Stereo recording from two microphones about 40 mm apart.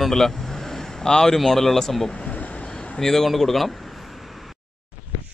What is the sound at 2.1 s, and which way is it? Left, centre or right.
Vehicle, left.